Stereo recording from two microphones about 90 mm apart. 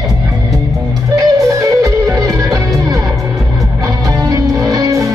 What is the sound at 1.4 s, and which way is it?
Music, 40° right (ahead or behind).